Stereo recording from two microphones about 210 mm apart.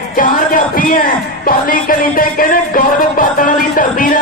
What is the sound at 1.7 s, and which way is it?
A man's voice, 40° left (ahead or behind).